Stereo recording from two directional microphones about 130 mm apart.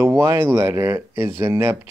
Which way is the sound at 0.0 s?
20° right (ahead or behind).